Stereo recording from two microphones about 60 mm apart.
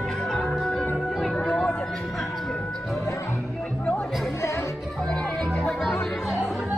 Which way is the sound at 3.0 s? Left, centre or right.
Left.